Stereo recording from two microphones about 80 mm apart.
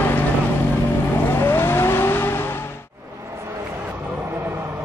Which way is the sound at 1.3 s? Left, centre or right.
Left.